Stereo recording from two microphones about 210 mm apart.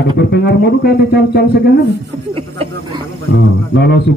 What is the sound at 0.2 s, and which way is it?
A man's voice, 50° left (ahead or behind).